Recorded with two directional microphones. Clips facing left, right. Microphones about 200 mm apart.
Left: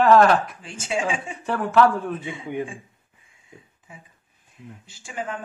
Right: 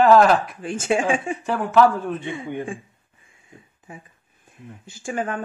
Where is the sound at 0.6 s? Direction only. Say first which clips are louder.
Right 5 dB; 55° right (ahead or behind).